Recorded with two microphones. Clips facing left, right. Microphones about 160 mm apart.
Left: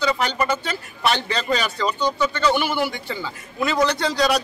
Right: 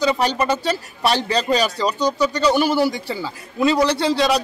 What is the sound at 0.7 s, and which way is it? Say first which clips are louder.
A man's voice: right 3 dB; 35° right (ahead or behind).